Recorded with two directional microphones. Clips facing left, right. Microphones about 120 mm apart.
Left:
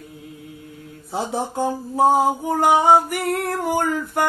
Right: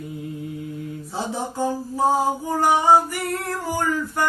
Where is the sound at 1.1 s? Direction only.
60° left (ahead or behind).